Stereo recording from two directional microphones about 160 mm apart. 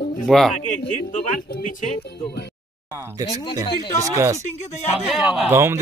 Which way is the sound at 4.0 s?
20° right (ahead or behind).